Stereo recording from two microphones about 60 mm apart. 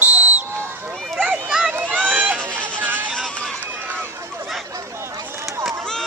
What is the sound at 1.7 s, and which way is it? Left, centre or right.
Run, right.